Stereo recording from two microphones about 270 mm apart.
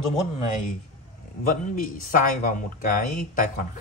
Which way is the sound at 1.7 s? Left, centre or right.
Left.